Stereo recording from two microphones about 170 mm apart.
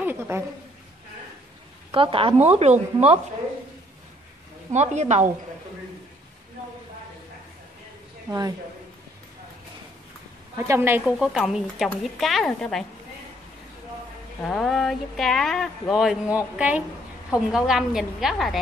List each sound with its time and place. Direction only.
0.0 s a woman's voice: 10° right (ahead or behind)
1.9 s a woman's voice: 30° right (ahead or behind)
4.7 s a woman's voice: 40° right (ahead or behind)
8.3 s a man's voice: 20° right (ahead or behind)
10.7 s speech: 10° right (ahead or behind); by 12.8 s 5° left (ahead or behind)
14.4 s speech: centre (ahead or behind)